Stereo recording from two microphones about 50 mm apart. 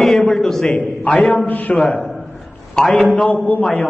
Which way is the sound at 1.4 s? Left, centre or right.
Left.